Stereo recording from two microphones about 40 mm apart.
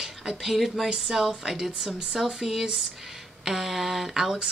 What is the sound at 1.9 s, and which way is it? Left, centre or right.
Speech, centre.